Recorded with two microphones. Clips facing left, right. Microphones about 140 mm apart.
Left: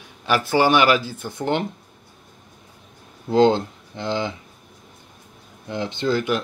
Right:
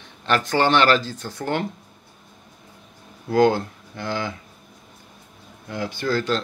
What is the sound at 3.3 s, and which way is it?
Speech, 20° left (ahead or behind).